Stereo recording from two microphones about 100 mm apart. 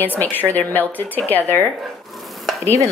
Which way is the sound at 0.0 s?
20° left (ahead or behind).